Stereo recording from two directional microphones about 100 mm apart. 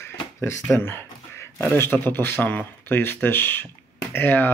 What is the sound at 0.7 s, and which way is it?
A man's voice, 20° left (ahead or behind).